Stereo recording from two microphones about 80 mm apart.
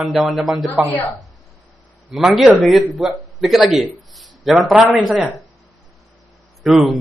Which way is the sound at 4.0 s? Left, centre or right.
Centre.